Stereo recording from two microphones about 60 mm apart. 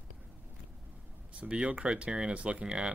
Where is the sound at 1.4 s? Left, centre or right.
Right.